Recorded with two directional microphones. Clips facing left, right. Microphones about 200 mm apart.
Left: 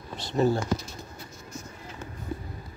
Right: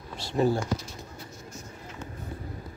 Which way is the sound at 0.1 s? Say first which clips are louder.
Left 1 dB; 10° right (ahead or behind).